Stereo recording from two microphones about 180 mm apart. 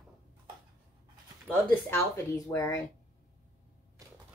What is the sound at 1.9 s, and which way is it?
Speech, 15° left (ahead or behind).